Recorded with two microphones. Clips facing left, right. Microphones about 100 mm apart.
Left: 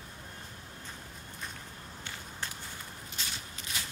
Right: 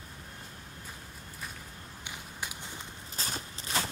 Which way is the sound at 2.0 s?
15° right (ahead or behind).